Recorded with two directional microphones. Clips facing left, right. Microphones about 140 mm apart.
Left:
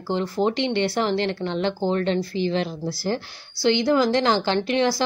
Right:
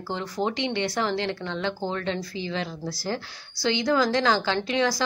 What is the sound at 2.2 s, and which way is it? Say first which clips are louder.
Speech: left 8 dB; 60° left (ahead or behind).